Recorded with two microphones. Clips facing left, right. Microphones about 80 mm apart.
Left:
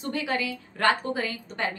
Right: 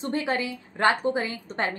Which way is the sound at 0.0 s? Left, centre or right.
Right.